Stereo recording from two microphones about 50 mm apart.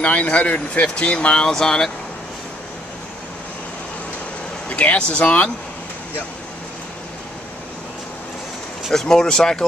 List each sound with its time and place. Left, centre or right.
0.0 s speech: left; by 1.9 s centre
4.6 s speech: left
8.9 s speech: centre